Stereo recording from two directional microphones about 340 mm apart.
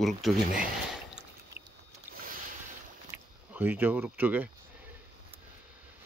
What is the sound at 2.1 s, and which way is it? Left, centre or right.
Boat, right.